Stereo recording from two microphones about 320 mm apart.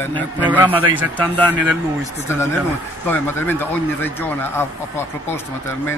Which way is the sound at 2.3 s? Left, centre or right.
Centre.